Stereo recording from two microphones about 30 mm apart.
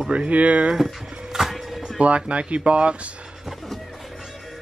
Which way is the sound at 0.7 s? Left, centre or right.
Centre.